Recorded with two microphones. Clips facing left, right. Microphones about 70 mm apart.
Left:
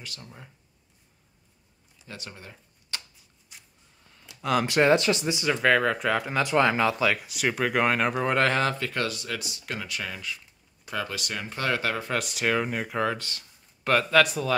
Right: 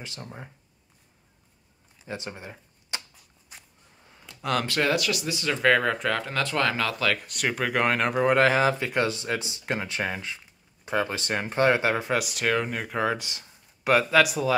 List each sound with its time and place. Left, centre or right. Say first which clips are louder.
0.0 s speech: right 4 dB; right
2.0 s a sound: right 6 dB; right
4.4 s speech: left 2 dB; centre
4.6 s speech: left 7 dB; left
5.5 s speech: even; centre; by 12.1 s right
12.1 s speech: right 1 dB; centre
13.2 s speech: even; centre